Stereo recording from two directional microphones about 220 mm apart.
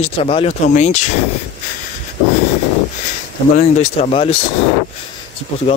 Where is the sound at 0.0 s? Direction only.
25° left (ahead or behind).